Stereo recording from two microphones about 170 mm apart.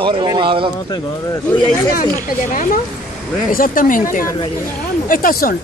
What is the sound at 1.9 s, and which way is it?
Speech, 55° left (ahead or behind).